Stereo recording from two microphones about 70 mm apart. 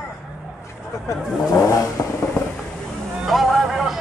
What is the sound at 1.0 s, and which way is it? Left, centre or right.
Speech, left.